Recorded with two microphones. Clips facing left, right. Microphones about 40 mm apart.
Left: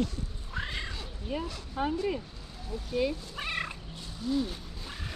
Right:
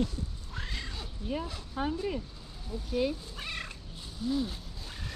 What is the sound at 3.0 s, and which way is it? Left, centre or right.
Speech, centre.